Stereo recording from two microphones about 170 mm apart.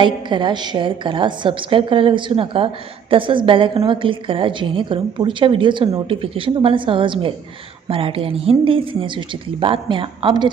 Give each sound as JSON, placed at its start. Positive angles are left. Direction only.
{"t": 0.0, "sound": "a woman's voice", "side_deg": -25}